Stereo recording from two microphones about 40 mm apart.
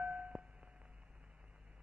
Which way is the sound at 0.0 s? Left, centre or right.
Right.